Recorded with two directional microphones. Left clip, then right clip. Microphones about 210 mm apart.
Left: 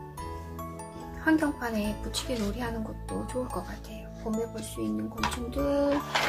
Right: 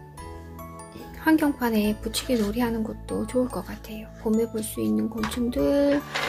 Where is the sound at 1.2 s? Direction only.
40° right (ahead or behind).